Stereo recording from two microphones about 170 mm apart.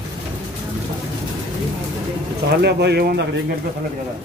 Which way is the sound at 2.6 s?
75° right (ahead or behind).